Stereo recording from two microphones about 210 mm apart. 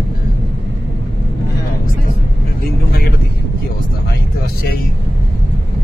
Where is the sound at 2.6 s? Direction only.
45° left (ahead or behind).